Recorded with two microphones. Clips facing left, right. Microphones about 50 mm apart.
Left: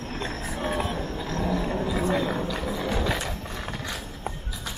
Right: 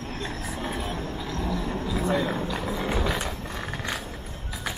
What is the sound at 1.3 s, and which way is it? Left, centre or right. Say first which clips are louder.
Vehicle: left 4 dB; left.